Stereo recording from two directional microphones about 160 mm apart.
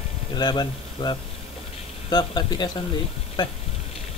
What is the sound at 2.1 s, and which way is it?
Speech, 25° left (ahead or behind).